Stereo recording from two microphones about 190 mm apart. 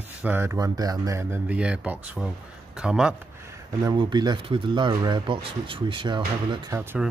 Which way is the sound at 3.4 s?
20° right (ahead or behind).